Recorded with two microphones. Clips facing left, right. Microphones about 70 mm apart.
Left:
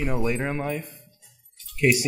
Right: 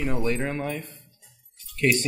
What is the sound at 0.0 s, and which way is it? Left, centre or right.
Speech, centre.